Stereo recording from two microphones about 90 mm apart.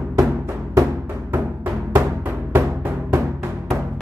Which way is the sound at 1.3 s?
25° right (ahead or behind).